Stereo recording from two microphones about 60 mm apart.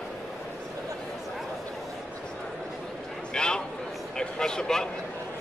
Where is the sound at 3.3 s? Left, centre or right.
Centre.